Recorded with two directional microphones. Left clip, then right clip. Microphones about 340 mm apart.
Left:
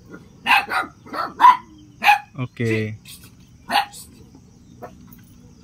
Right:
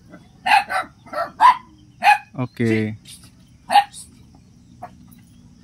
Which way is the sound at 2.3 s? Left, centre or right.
Centre.